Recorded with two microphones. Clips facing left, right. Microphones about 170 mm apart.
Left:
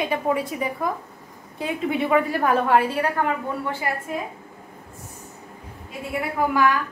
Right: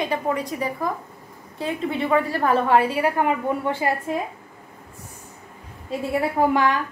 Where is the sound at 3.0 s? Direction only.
15° right (ahead or behind).